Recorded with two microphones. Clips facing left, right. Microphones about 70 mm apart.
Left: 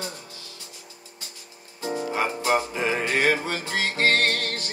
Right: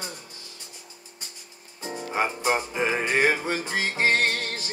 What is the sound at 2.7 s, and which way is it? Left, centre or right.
Music, centre.